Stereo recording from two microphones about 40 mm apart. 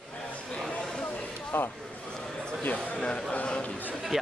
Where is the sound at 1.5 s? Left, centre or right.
Left.